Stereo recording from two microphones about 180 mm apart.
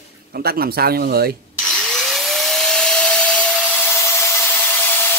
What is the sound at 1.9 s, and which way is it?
Vacuum cleaner, centre (ahead or behind).